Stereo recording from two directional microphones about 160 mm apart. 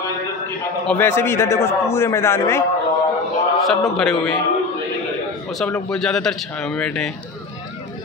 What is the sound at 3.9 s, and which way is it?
Speech, centre (ahead or behind).